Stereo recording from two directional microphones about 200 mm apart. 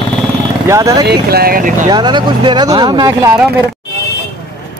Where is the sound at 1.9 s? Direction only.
20° right (ahead or behind).